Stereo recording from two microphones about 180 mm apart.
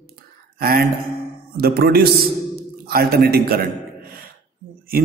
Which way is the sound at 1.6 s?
60° right (ahead or behind).